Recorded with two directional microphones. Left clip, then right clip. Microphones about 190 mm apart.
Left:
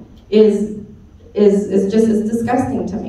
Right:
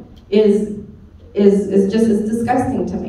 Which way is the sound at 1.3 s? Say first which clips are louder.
Left 1 dB; 15° left (ahead or behind).